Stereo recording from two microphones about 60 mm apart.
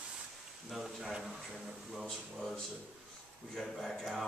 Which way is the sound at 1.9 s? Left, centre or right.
Centre.